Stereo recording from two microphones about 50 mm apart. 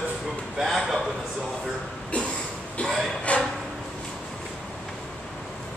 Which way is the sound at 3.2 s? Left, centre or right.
Left.